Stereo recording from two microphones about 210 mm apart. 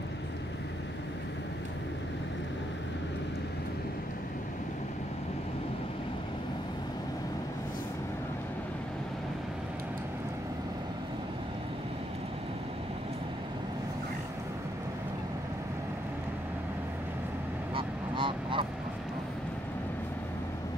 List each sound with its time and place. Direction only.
17.7 s honk: 25° right (ahead or behind)